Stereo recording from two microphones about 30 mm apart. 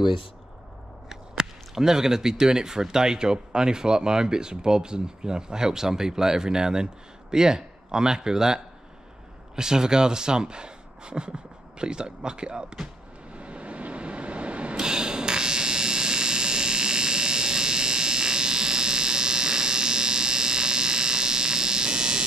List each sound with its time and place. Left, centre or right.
1.0 s speech: centre; by 12.7 s right
13.3 s vehicle: right
14.8 s electric shaver: right